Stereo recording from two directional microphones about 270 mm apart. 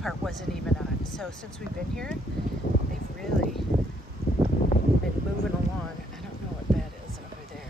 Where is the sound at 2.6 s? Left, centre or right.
Left.